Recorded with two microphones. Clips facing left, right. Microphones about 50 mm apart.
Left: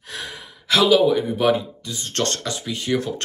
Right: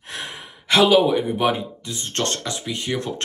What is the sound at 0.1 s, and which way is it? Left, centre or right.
Sigh, right.